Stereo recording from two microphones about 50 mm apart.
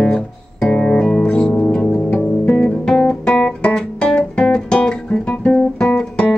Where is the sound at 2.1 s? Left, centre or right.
Left.